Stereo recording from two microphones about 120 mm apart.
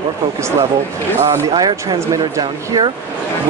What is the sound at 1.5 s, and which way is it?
Speech, 40° right (ahead or behind).